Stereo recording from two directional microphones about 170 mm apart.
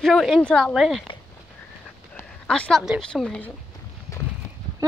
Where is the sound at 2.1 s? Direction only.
5° left (ahead or behind).